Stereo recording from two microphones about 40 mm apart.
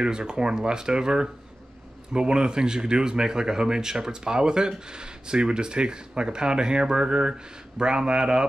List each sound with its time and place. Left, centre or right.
0.0 s speech: right